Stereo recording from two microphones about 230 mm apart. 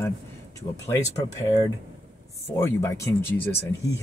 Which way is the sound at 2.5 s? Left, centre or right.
Centre.